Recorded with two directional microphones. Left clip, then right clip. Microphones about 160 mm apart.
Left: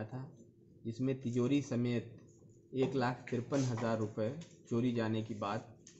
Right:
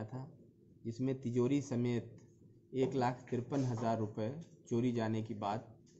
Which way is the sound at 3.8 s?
35° right (ahead or behind).